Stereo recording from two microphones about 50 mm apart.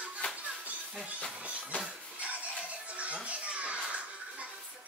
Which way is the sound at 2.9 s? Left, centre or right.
Right.